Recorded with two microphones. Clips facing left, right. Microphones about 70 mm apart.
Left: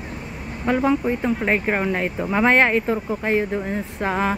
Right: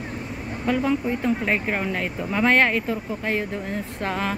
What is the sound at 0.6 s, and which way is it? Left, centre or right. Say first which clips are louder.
Speech: left 3 dB; left.